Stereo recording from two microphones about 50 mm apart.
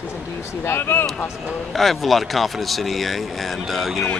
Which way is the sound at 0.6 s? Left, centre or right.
Left.